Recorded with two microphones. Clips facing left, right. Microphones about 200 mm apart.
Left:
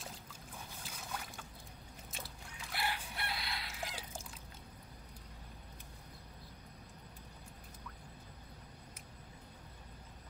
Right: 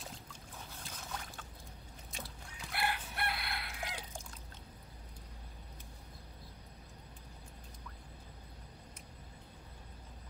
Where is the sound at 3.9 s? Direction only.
5° left (ahead or behind).